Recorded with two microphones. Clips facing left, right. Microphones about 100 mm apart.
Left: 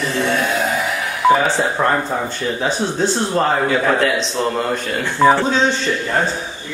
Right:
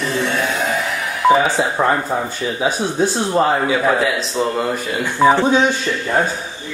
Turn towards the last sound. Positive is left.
turn(degrees=-10)  # may be behind; listen again after turning